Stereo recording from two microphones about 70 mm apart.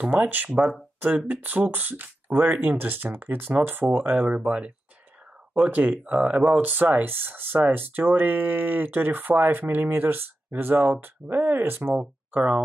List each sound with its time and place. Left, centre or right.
0.0 s speech: right